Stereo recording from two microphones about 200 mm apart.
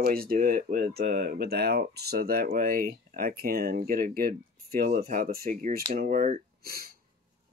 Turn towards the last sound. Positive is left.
turn(degrees=-50)  # may be behind; listen again after turning